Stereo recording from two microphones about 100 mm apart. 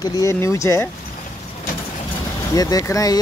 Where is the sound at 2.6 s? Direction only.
35° left (ahead or behind).